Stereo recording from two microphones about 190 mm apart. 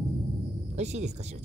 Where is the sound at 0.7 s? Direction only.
35° right (ahead or behind).